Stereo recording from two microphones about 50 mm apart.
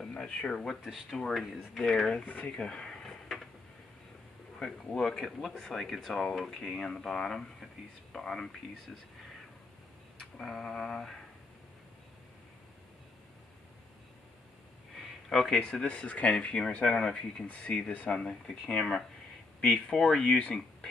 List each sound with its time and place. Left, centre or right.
0.2 s speech: centre
2.2 s speech: left
2.5 s a sound: centre
4.6 s speech: centre
10.4 s speech: centre
15.0 s a sound: centre
15.6 s speech: centre
16.3 s speech: centre
16.7 s speech: left
17.0 s speech: centre
18.7 s speech: left